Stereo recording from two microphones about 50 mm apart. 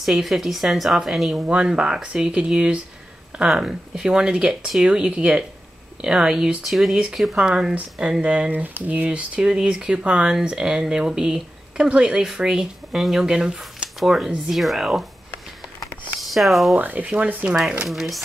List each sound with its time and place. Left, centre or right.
0.0 s a woman's voice: centre
1.5 s a woman's voice: centre
7.3 s speech: centre
13.0 s a woman's voice: centre
16.2 s speech: centre
16.7 s speech: right
17.8 s a woman's voice: centre